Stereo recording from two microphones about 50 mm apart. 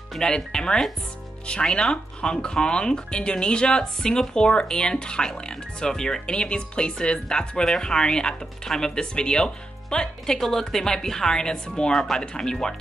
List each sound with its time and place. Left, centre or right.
0.2 s speech: centre